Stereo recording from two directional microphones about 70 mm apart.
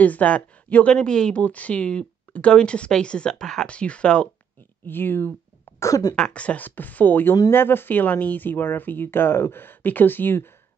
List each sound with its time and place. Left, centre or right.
0.0 s speech: left
4.8 s speech: left
5.8 s speech: left
6.1 s speech: centre; by 10.5 s left